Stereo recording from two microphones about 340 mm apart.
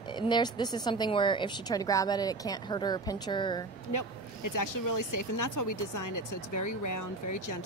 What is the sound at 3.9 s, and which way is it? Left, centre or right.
Speech, left.